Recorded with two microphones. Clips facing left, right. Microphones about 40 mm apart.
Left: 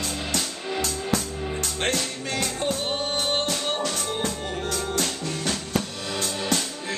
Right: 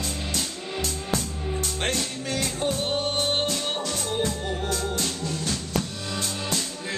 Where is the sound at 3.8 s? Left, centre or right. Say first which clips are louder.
Even; left.